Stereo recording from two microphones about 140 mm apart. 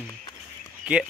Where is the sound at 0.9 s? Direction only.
10° right (ahead or behind).